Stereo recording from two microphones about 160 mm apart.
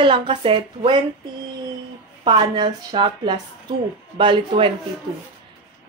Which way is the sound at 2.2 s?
30° right (ahead or behind).